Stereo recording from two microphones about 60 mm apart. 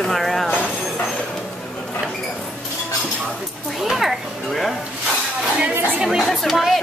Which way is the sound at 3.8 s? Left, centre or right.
Centre.